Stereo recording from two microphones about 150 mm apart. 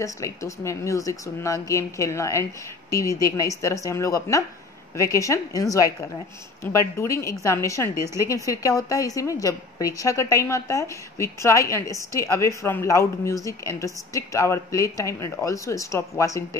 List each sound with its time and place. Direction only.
0.0 s a woman's voice: 20° left (ahead or behind)
8.0 s a woman's voice: 20° right (ahead or behind)
8.3 s a woman's voice: 20° left (ahead or behind)